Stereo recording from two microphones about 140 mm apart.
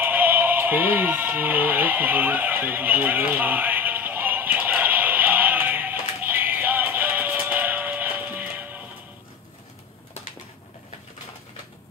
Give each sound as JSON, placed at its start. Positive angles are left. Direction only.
{"t": 0.0, "sound": "music", "side_deg": -15}